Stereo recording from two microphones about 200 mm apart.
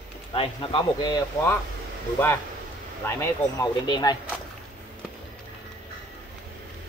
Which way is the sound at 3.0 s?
15° left (ahead or behind).